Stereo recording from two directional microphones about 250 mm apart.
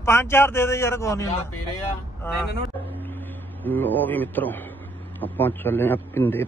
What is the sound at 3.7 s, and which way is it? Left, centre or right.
Speech, centre.